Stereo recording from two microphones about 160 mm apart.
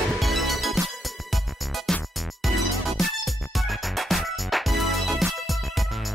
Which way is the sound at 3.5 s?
Centre (ahead or behind).